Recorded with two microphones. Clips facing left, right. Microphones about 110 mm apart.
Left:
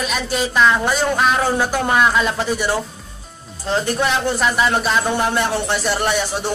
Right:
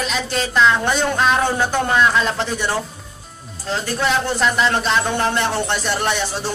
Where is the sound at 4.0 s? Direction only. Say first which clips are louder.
Even; 10° left (ahead or behind).